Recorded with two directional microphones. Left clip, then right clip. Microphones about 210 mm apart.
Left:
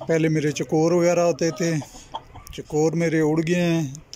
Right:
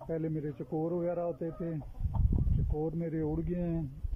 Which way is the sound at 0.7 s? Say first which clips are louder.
Left 14 dB; 25° left (ahead or behind).